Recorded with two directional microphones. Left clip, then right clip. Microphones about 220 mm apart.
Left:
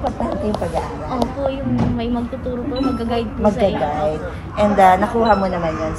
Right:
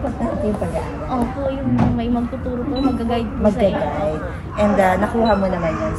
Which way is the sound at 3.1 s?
5° left (ahead or behind).